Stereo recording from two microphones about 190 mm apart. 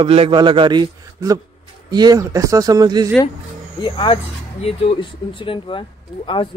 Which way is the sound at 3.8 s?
25° left (ahead or behind).